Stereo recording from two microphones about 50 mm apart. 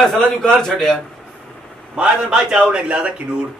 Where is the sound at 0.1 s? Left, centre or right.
Centre.